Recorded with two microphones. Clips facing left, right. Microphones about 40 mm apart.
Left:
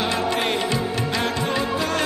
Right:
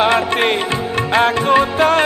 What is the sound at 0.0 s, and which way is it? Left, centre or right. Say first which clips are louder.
Music: right 8 dB; right.